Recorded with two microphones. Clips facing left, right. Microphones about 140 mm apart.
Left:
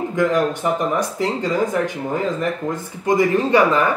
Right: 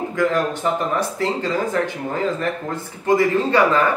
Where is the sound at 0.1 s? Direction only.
15° left (ahead or behind).